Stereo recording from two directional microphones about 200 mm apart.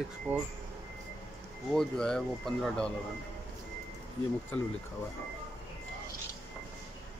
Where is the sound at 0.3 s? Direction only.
10° right (ahead or behind).